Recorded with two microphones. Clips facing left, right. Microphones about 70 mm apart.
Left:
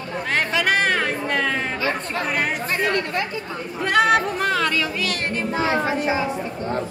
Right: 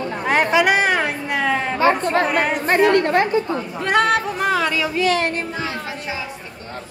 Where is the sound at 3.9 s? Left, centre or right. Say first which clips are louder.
Even; centre.